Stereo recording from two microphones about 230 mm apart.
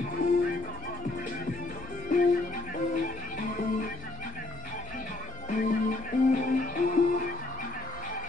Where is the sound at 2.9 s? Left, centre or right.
Left.